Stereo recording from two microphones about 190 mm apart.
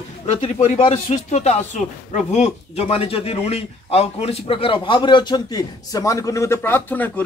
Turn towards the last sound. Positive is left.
turn(degrees=10)  # may be behind; listen again after turning